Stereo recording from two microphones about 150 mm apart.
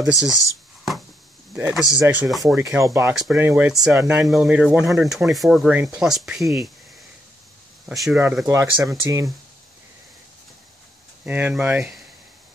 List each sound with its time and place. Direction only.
0.0 s speech: centre (ahead or behind)
1.5 s speech: 5° right (ahead or behind)
2.4 s speech: 20° right (ahead or behind); by 6.7 s centre (ahead or behind)
7.9 s speech: centre (ahead or behind)
8.5 s speech: 20° right (ahead or behind)
11.2 s speech: 10° right (ahead or behind)